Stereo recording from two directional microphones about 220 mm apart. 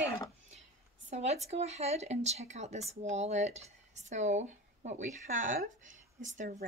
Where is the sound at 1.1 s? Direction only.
30° right (ahead or behind).